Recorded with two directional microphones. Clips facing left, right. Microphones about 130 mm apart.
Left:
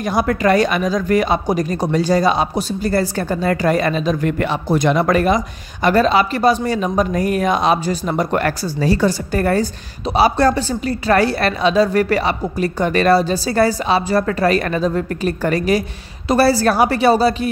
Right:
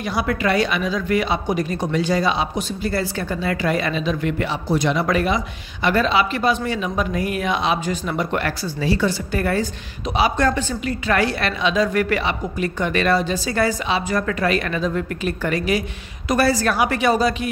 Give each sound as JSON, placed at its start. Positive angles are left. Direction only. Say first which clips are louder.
{"t": 0.0, "sound": "a woman's voice", "louder": "left 5 dB", "side_deg": 45}